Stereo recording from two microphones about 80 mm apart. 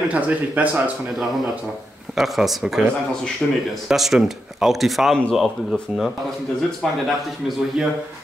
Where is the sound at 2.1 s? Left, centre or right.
Centre.